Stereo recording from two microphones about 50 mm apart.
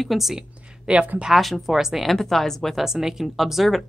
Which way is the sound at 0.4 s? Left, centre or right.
Centre.